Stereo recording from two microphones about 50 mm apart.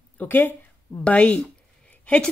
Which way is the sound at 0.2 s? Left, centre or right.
Left.